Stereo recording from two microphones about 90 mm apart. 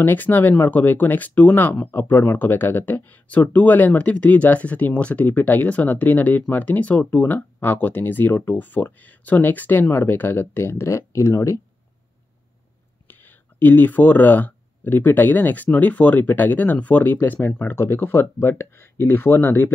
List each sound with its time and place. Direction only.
0.0 s speech: 20° left (ahead or behind)
13.1 s speech: 20° left (ahead or behind)